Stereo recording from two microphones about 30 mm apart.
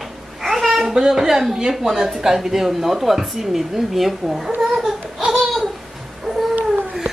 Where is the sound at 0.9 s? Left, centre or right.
Centre.